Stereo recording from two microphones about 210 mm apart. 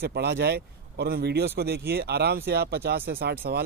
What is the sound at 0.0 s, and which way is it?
Speech, 50° right (ahead or behind).